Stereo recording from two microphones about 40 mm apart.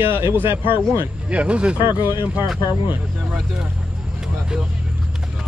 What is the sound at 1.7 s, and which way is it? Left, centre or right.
Speech, right.